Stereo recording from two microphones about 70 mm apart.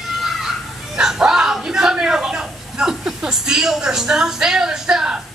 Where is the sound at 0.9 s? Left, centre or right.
Centre.